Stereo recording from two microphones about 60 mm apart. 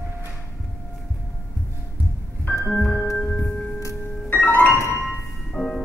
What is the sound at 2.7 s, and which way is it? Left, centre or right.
Music, centre.